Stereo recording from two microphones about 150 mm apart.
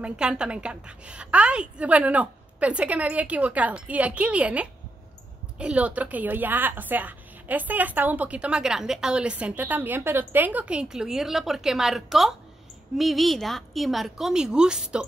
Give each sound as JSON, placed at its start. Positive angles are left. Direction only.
{"t": 0.0, "sound": "a woman's voice", "side_deg": -5}